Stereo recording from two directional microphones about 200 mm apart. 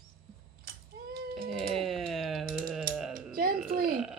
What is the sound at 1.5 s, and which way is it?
Speech, centre (ahead or behind).